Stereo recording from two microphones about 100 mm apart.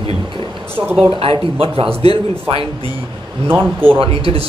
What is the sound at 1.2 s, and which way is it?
Speech, 65° right (ahead or behind).